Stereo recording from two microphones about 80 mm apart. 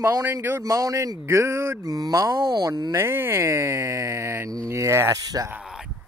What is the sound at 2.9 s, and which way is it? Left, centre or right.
Speech, right.